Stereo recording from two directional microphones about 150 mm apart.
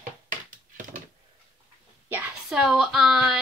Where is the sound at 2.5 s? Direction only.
5° right (ahead or behind).